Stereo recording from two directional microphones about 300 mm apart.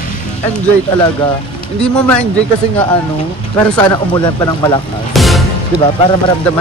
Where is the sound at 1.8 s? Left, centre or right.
Centre.